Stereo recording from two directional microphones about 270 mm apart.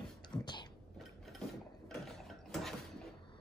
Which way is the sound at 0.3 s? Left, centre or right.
Centre.